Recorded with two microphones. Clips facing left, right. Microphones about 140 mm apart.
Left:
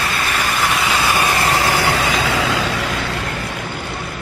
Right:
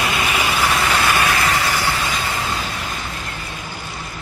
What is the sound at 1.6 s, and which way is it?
Vehicle, 55° left (ahead or behind).